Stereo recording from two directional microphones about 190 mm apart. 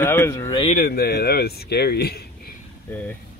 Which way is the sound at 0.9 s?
60° left (ahead or behind).